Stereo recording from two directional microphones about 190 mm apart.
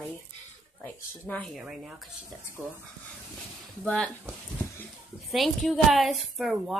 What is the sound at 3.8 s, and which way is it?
Speech, 5° left (ahead or behind).